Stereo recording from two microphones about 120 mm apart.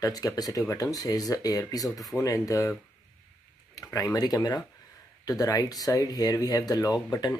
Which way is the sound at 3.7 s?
30° left (ahead or behind).